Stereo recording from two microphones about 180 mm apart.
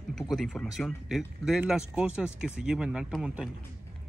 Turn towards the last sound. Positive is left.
turn(degrees=-5)  # may be behind; listen again after turning